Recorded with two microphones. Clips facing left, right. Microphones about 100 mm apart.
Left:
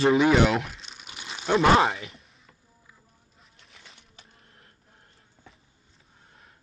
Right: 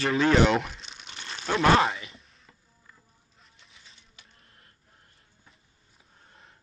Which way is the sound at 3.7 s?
85° left.